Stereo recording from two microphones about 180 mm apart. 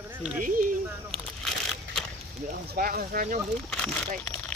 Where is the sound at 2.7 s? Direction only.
55° right (ahead or behind).